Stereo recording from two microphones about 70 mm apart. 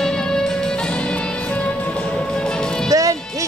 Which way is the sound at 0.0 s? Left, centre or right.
Centre.